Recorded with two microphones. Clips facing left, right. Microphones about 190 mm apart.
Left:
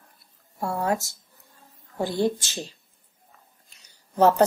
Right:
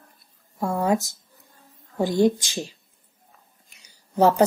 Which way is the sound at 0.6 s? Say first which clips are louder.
Right 3 dB; 20° right (ahead or behind).